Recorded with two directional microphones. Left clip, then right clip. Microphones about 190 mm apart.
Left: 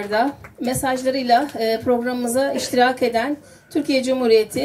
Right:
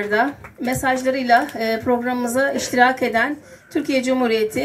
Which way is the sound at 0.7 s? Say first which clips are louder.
Right 1 dB; 25° left (ahead or behind).